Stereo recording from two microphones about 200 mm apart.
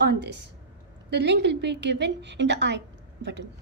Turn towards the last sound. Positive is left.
turn(degrees=-60)  # may be behind; listen again after turning